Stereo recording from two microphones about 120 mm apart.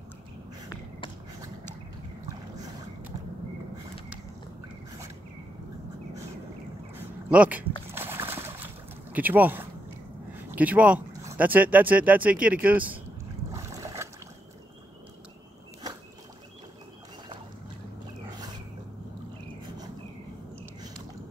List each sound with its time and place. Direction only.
7.0 s a sound: 10° right (ahead or behind)
7.9 s boat: 20° right (ahead or behind)
10.5 s speech: 15° right (ahead or behind)
13.5 s boat: 25° right (ahead or behind)